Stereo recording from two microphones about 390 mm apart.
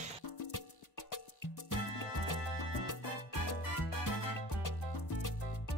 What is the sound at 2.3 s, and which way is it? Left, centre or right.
Music, left.